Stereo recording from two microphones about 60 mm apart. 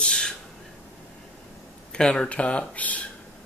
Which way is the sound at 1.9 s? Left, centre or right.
Centre.